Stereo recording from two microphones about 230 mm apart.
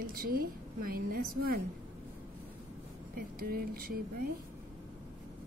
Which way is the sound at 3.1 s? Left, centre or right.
Right.